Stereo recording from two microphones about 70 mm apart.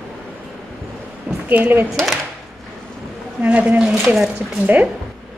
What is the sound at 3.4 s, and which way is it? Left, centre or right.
Speech, right.